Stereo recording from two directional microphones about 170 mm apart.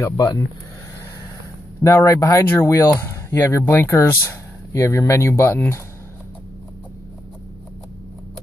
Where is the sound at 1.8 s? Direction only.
20° left (ahead or behind).